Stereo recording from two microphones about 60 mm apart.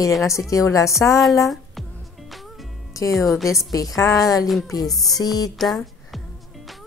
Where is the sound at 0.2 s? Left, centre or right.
Left.